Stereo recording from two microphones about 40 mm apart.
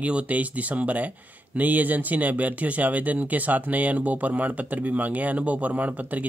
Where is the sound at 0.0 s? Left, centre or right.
Right.